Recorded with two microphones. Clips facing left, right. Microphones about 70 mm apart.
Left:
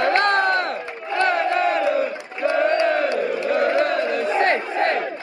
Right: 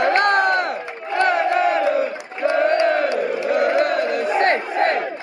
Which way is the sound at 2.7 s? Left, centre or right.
Right.